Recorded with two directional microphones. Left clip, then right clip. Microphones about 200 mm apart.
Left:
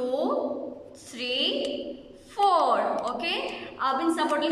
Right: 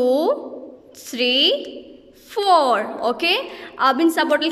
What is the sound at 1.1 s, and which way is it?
A woman's voice, 55° right (ahead or behind).